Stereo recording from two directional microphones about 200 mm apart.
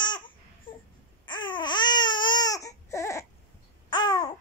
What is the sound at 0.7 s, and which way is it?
Baby cry, 25° left (ahead or behind).